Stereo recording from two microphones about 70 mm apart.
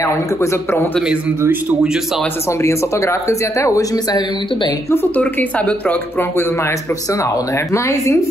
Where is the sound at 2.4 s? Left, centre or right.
Left.